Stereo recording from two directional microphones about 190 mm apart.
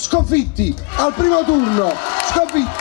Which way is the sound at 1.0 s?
30° left (ahead or behind).